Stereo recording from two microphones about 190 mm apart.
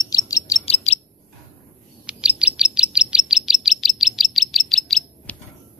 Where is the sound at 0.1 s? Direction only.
20° left (ahead or behind).